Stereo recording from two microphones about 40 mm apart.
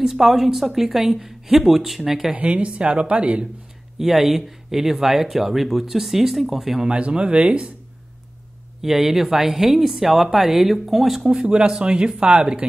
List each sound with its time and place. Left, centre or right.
0.0 s speech: centre
2.5 s speech: right
4.0 s speech: centre
6.9 s speech: right
8.8 s speech: centre
11.2 s speech: right